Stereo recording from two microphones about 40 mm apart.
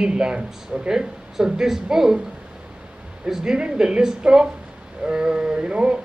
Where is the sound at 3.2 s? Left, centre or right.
Centre.